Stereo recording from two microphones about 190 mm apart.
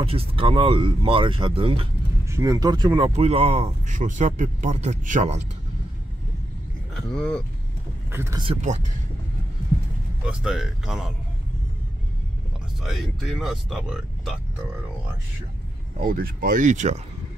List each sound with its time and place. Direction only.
0.0 s speech: 30° right (ahead or behind)
2.2 s speech: 15° right (ahead or behind); by 5.4 s 40° right (ahead or behind)
7.0 s speech: 5° left (ahead or behind)
8.1 s speech: 15° right (ahead or behind)
8.5 s speech: 40° right (ahead or behind)
10.2 s speech: 5° right (ahead or behind)
12.8 s speech: centre (ahead or behind)
16.0 s speech: 50° right (ahead or behind)